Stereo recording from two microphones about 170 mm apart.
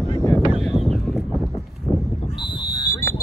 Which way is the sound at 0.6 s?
Centre (ahead or behind).